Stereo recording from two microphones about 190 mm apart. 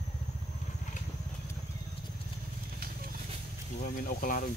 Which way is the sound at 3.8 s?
45° left (ahead or behind).